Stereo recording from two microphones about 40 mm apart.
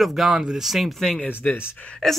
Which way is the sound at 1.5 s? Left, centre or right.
Left.